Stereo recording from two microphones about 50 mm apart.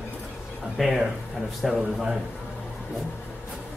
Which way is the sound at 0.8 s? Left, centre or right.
Centre.